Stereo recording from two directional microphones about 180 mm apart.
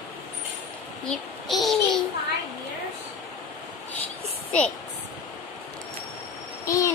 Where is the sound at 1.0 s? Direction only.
Centre (ahead or behind).